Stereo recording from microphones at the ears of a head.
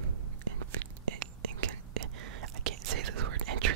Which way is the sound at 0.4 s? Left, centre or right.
Right.